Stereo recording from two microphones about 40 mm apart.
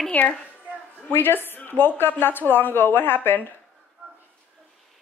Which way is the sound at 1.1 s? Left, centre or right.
Left.